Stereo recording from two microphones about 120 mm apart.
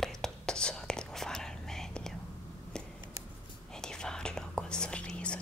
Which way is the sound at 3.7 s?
5° left (ahead or behind).